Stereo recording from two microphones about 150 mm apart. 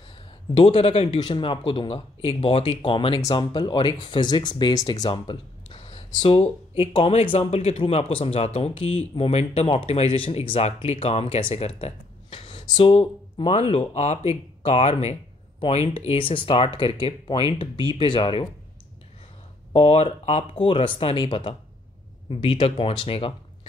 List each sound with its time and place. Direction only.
0.6 s speech: 35° left (ahead or behind)
13.5 s speech: 45° left (ahead or behind)
19.7 s speech: 40° left (ahead or behind)